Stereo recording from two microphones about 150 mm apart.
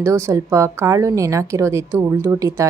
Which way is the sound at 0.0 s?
20° right (ahead or behind).